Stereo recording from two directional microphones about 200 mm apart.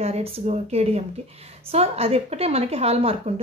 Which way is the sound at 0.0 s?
30° right (ahead or behind).